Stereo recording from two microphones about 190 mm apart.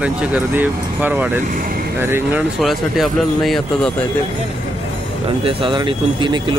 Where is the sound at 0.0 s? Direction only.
5° right (ahead or behind).